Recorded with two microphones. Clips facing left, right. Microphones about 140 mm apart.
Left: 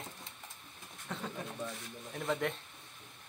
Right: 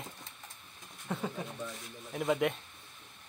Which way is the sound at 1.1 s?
10° right (ahead or behind).